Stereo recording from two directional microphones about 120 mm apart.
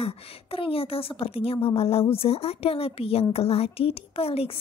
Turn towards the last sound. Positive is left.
turn(degrees=55)  # may be behind; listen again after turning